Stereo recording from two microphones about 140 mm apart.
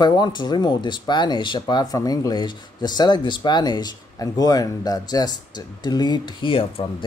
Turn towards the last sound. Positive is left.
turn(degrees=35)  # may be behind; listen again after turning